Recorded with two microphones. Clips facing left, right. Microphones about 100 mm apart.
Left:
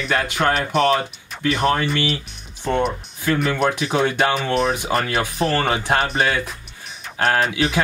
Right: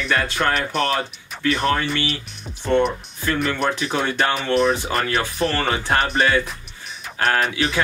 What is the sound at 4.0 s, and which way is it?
Speech, 15° left (ahead or behind).